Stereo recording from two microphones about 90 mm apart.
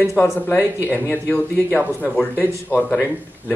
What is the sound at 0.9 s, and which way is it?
Speech, 20° left (ahead or behind).